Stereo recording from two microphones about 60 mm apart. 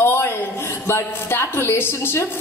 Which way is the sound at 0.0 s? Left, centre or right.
Left.